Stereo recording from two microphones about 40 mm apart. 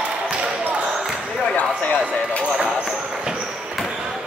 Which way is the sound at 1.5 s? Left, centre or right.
Left.